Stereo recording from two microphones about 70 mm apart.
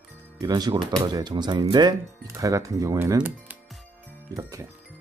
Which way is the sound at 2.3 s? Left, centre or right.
Right.